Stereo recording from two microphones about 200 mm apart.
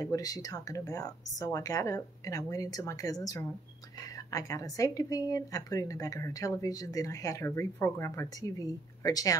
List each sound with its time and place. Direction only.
0.0 s a woman's voice: 20° left (ahead or behind)